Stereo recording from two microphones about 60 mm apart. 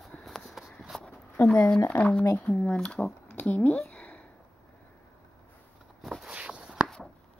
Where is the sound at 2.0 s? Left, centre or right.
Centre.